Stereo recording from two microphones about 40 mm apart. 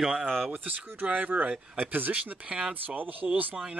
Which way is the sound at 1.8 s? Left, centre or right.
Right.